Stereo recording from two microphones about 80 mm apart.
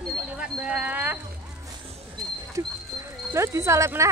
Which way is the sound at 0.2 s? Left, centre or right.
Centre.